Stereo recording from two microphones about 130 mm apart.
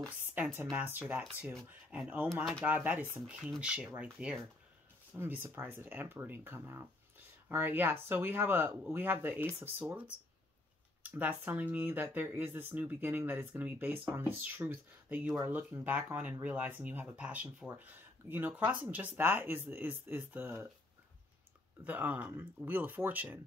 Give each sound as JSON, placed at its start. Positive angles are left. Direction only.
{"t": 0.7, "sound": "speech", "side_deg": -15}
{"t": 21.8, "sound": "speech", "side_deg": -10}